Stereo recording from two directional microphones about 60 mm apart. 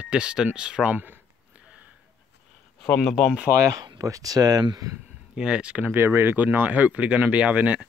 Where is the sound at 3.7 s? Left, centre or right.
Right.